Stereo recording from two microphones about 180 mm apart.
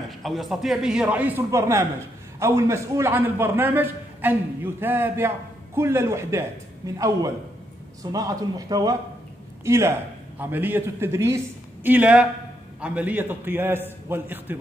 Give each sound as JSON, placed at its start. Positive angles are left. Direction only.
{"t": 0.2, "sound": "a man's voice", "side_deg": 0}